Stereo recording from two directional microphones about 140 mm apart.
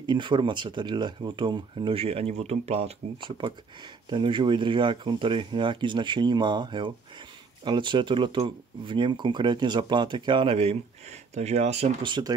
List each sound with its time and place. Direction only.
0.0 s speech: 35° right (ahead or behind)
12.1 s speech: 30° right (ahead or behind)